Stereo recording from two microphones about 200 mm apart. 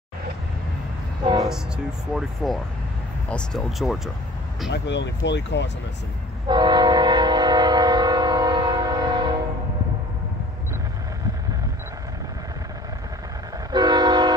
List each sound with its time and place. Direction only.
2.1 s speech: centre (ahead or behind)
4.6 s speech: 60° left (ahead or behind)
6.4 s train: 20° right (ahead or behind)
13.7 s train: 20° right (ahead or behind)